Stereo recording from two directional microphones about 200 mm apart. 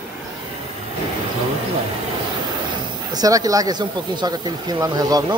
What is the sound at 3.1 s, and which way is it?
Speech, 20° right (ahead or behind).